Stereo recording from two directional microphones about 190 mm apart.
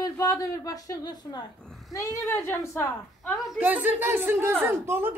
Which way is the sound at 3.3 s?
Centre (ahead or behind).